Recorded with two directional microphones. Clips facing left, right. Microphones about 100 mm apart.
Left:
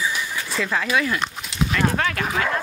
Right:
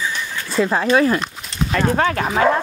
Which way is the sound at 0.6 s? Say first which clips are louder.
Right 7 dB; 35° right (ahead or behind).